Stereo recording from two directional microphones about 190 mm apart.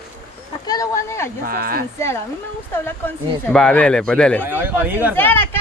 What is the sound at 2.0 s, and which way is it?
Speech, 15° left (ahead or behind).